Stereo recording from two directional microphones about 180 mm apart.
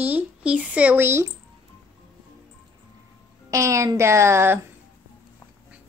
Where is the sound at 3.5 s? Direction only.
15° right (ahead or behind).